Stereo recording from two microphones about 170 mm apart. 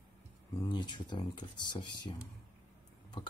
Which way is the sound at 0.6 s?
25° left (ahead or behind).